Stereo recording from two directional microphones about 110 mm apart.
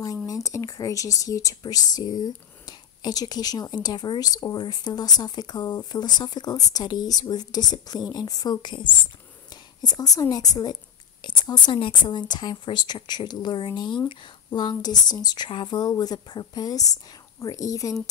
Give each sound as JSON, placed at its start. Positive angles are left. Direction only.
{"t": 0.0, "sound": "a woman's voice", "side_deg": 30}